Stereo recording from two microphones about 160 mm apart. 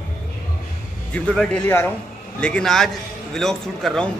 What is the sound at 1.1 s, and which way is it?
A man's voice, 5° left (ahead or behind).